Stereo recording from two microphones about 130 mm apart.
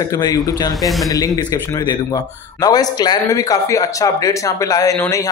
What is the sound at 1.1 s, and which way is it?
A man's voice, 30° left (ahead or behind).